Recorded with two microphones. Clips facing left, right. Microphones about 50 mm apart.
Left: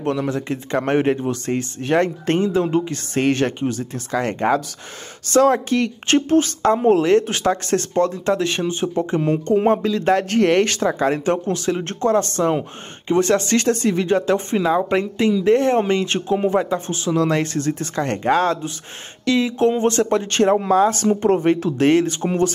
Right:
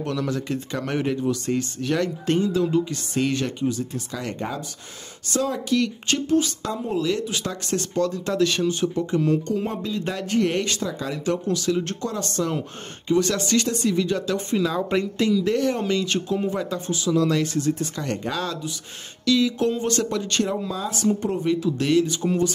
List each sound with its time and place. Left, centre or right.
0.0 s speech: left
5.2 s speech: left
5.8 s speech: left
7.7 s speech: left
9.8 s speech: left
10.0 s speech: left
21.7 s speech: left